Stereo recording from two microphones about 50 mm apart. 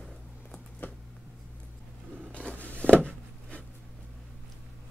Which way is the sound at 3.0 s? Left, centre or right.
Centre.